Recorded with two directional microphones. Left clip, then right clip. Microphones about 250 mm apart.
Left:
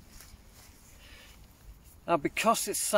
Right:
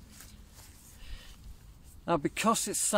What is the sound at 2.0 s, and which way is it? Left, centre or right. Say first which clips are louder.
Speech: left 2 dB; centre.